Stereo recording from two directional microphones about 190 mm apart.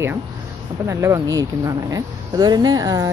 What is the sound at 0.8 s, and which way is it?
Speech, 15° right (ahead or behind).